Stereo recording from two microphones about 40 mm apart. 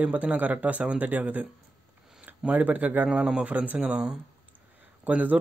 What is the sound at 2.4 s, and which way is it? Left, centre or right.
A man's voice, right.